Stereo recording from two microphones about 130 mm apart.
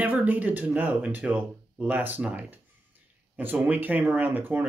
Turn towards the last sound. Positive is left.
turn(degrees=-15)  # may be behind; listen again after turning